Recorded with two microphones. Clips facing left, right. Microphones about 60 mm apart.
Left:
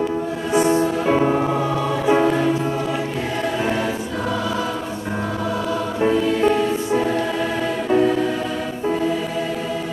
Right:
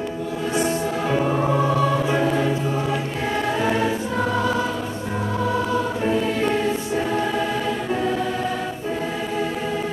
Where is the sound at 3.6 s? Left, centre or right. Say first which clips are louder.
Right 2 dB; centre.